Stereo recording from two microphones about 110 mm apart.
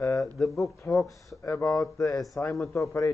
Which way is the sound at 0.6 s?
30° left (ahead or behind).